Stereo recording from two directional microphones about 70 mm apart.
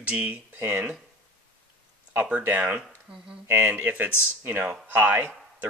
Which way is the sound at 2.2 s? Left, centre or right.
Right.